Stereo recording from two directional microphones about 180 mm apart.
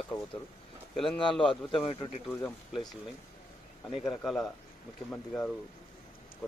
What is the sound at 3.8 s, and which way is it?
Speech, centre (ahead or behind).